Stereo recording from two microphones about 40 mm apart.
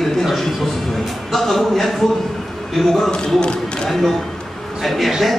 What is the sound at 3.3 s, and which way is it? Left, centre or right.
Speech, centre.